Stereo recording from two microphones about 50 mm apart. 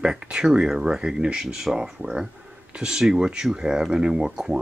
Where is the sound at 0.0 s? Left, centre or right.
Centre.